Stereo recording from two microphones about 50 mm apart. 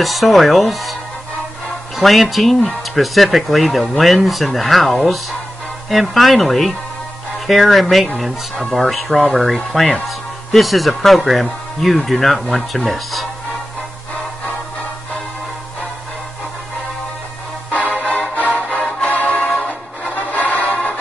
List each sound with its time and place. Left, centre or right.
0.0 s speech: centre
2.0 s speech: centre
17.7 s music: left
19.6 s music: centre
20.2 s music: left